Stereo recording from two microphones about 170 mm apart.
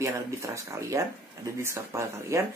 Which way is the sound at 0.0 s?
15° right (ahead or behind).